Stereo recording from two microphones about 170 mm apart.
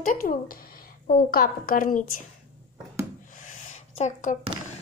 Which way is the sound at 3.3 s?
50° left (ahead or behind).